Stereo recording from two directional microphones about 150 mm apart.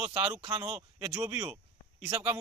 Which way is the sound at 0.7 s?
10° right (ahead or behind).